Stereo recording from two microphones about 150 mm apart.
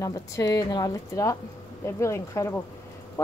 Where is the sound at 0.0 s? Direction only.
20° left (ahead or behind).